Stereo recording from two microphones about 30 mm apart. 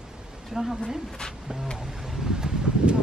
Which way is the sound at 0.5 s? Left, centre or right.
Centre.